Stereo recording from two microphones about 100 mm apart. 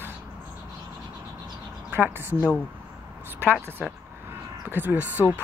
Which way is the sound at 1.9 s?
20° right (ahead or behind).